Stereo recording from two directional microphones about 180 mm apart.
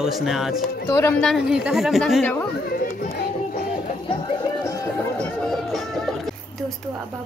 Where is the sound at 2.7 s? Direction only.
50° left (ahead or behind).